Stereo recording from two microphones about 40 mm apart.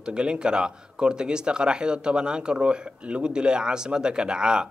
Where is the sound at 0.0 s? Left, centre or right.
Right.